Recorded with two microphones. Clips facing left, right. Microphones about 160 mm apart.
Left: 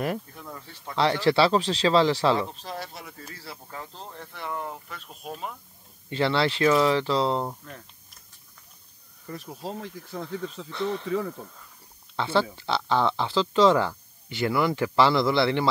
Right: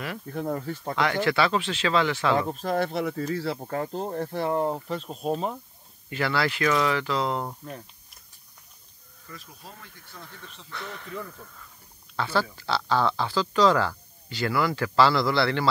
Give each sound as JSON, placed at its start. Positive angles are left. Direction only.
{"t": 0.3, "sound": "speech", "side_deg": -55}
{"t": 1.2, "sound": "speech", "side_deg": 30}
{"t": 2.3, "sound": "speech", "side_deg": -50}
{"t": 4.6, "sound": "speech", "side_deg": -35}
{"t": 6.0, "sound": "speech", "side_deg": 25}
{"t": 9.3, "sound": "speech", "side_deg": 70}
{"t": 10.7, "sound": "speech", "side_deg": 25}